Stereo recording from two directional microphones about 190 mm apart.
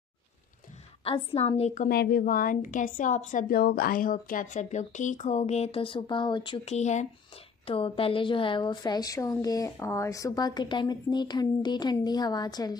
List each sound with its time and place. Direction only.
1.0 s a woman's voice: 30° left (ahead or behind)
1.9 s a woman's voice: 55° left (ahead or behind); by 12.7 s 20° left (ahead or behind)